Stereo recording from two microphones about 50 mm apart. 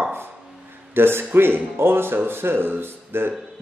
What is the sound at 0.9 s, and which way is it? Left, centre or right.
Speech, right.